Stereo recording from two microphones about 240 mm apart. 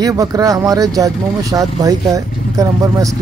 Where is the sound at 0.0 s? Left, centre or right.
Centre.